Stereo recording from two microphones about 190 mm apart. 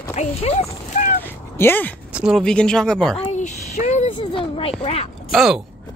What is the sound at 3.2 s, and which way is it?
Speech, 35° left (ahead or behind).